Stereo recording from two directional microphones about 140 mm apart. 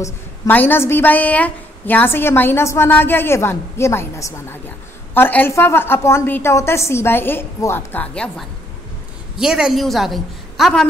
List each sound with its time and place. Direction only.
0.0 s a woman's voice: 15° left (ahead or behind)
9.4 s a woman's voice: 5° right (ahead or behind)